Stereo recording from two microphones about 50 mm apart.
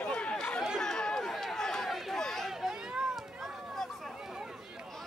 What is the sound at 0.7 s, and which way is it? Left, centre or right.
Chatter, centre.